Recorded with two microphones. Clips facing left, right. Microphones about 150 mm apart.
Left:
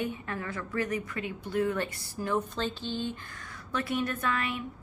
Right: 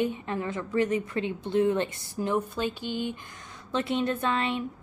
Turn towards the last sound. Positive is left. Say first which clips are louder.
# right 4 dB
turn(degrees=-25)  # may be behind; listen again after turning